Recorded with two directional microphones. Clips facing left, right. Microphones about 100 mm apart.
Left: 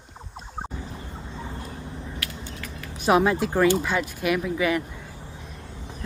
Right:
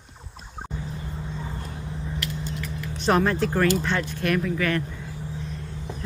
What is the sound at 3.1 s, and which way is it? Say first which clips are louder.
Speech: left 1 dB; 10° left (ahead or behind).